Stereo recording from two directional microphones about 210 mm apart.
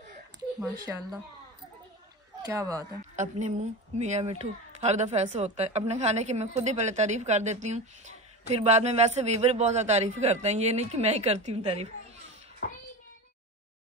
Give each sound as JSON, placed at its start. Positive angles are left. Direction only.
{"t": 0.6, "sound": "speech", "side_deg": -15}
{"t": 2.4, "sound": "speech", "side_deg": -15}
{"t": 3.0, "sound": "speech", "side_deg": -35}